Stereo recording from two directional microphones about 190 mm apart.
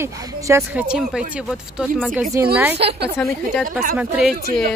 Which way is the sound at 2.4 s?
15° right (ahead or behind).